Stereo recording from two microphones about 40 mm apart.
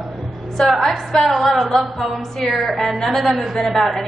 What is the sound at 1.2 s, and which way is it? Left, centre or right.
Female singing, centre.